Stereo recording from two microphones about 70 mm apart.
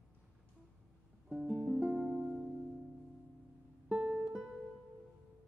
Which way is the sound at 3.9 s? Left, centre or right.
Right.